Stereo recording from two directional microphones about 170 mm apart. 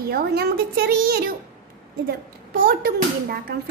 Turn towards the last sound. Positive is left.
turn(degrees=-65)  # may be behind; listen again after turning